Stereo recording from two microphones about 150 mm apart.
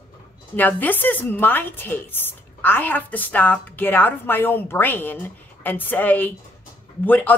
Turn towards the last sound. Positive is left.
turn(degrees=10)  # may be behind; listen again after turning